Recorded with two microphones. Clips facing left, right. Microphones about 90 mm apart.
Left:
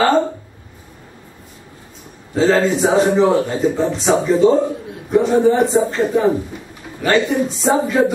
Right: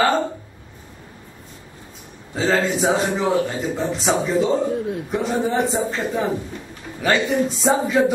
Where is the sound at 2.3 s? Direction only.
Centre (ahead or behind).